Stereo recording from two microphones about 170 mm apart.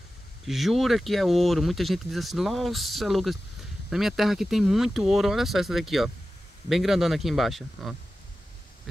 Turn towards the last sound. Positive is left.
turn(degrees=0)  # may be behind; listen again after turning